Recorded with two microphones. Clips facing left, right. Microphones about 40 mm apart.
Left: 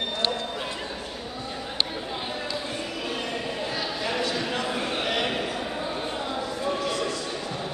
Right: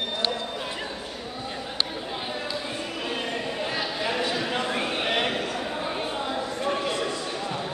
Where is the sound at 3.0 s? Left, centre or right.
Centre.